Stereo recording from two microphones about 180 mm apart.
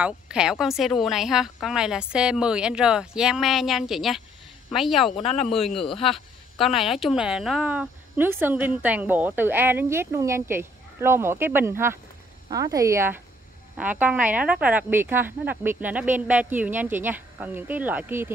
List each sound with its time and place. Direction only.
0.0 s speech: 5° right (ahead or behind)
5.2 s speech: 35° left (ahead or behind)
5.5 s speech: centre (ahead or behind)
5.9 s speech: 30° left (ahead or behind)
6.1 s a sound: centre (ahead or behind)
6.9 s speech: centre (ahead or behind)